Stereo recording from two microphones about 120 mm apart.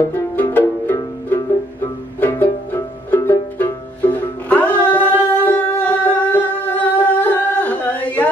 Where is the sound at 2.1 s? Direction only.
15° left (ahead or behind).